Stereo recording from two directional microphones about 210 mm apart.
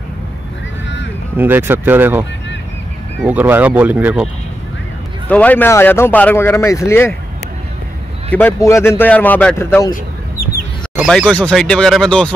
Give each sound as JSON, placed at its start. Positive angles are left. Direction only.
{"t": 1.3, "sound": "speech", "side_deg": -10}
{"t": 3.3, "sound": "speech", "side_deg": -10}
{"t": 5.3, "sound": "speech", "side_deg": 5}
{"t": 8.3, "sound": "speech", "side_deg": 10}
{"t": 10.4, "sound": "chicken", "side_deg": 45}
{"t": 11.1, "sound": "speech", "side_deg": 0}